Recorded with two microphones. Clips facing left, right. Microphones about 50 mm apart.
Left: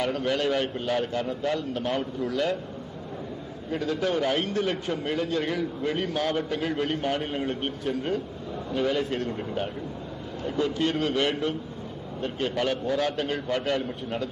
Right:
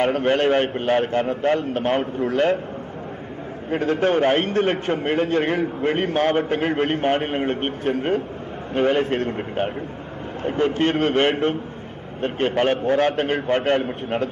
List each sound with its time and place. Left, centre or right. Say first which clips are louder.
0.0 s a man's voice: right 7 dB; right
3.7 s a man's voice: right 7 dB; right